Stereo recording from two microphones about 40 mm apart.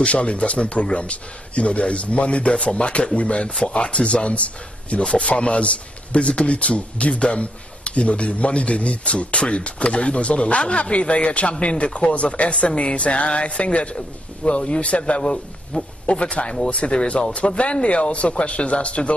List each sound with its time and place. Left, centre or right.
0.0 s speech: left
17.1 s speech: left